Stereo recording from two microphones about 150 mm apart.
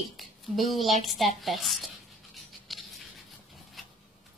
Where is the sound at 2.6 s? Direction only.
Centre (ahead or behind).